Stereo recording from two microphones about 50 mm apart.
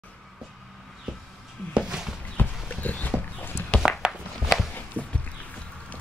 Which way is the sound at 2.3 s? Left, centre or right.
Left.